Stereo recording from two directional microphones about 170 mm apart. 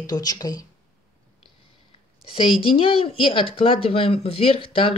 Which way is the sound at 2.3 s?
30° left (ahead or behind).